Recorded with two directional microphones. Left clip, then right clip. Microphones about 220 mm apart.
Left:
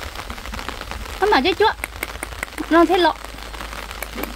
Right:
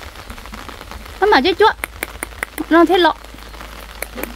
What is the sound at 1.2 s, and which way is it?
Rain on surface, 25° right (ahead or behind).